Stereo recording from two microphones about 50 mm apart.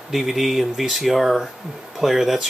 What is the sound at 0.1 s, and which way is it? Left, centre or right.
Speech, centre.